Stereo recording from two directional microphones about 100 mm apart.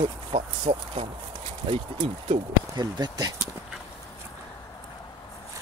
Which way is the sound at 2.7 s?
40° right (ahead or behind).